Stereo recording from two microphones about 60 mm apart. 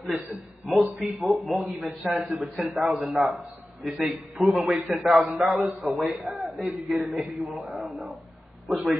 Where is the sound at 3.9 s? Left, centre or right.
Centre.